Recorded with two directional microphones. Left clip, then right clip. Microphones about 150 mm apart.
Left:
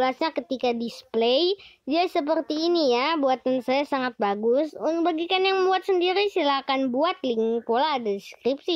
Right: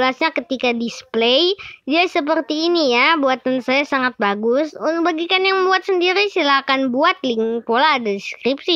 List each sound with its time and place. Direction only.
0.0 s speech: 15° right (ahead or behind)